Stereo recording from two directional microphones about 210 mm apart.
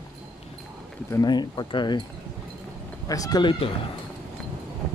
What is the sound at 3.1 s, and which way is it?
Speech, 15° left (ahead or behind).